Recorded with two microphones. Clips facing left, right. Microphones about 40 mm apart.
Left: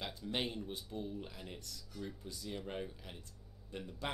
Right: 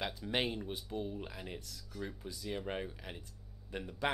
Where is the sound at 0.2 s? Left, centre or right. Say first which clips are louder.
Right 2 dB; right.